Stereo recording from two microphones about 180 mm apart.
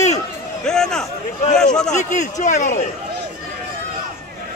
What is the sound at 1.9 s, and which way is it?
Speech, 40° left (ahead or behind).